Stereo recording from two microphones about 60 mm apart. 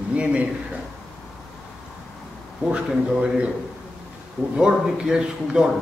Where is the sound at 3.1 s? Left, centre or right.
Centre.